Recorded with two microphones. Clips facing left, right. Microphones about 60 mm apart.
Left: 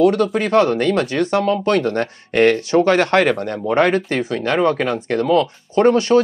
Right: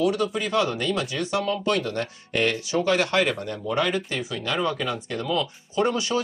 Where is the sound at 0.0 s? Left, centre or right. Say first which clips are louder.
Left 8 dB; left.